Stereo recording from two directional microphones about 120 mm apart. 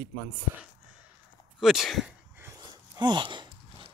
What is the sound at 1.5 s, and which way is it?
Speech, centre (ahead or behind).